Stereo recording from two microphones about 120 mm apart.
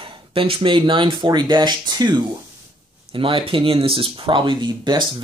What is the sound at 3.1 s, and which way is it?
Speech, 45° right (ahead or behind).